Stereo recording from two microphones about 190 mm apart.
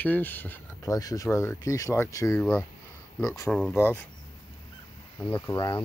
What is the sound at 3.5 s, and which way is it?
Speech, 5° left (ahead or behind).